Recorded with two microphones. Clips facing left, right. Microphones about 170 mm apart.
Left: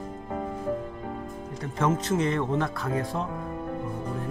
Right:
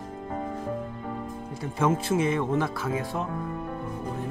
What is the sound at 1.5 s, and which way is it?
Speech, 10° right (ahead or behind).